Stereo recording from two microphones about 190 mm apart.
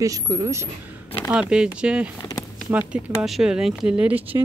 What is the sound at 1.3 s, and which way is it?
Speech, 5° right (ahead or behind).